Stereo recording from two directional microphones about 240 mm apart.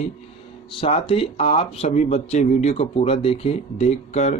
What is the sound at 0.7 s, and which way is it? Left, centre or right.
Speech, left.